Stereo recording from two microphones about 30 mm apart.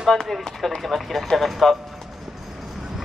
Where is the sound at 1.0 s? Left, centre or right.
Centre.